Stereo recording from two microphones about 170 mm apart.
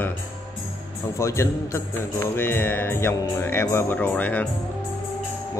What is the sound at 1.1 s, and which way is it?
Speech, 15° left (ahead or behind).